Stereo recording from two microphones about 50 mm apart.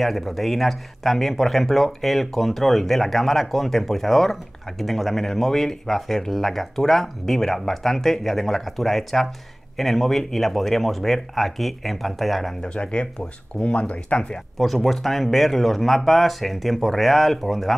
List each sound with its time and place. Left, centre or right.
0.0 s speech: centre
12.6 s speech: centre
14.6 s speech: centre